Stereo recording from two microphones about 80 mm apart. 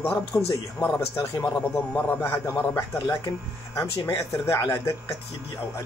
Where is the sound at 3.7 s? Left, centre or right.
Left.